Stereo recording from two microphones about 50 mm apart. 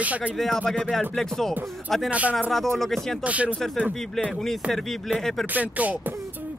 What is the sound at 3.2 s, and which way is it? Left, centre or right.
Speech, right.